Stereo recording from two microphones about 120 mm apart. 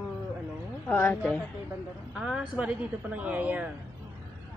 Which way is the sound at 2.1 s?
5° right (ahead or behind).